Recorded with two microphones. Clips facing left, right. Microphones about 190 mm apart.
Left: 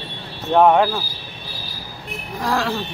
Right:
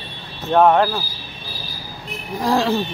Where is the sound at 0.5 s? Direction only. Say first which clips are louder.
Even; 5° left (ahead or behind).